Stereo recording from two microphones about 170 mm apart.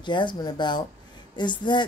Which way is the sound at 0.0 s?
25° left (ahead or behind).